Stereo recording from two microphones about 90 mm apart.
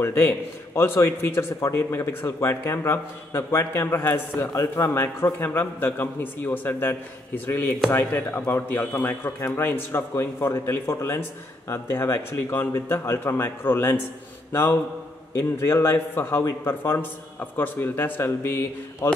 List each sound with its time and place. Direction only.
0.0 s a man's voice: 30° left (ahead or behind)